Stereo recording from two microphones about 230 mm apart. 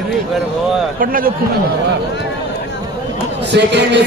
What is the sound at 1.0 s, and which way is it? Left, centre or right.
Speech, right.